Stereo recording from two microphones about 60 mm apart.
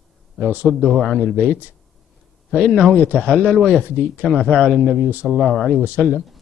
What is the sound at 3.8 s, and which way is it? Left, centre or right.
Speech, right.